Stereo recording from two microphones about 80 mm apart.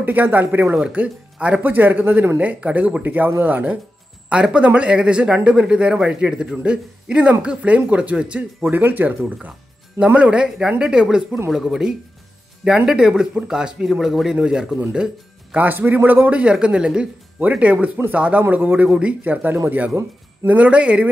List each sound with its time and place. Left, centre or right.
0.0 s speech: right
0.7 s speech: centre
15.5 s speech: right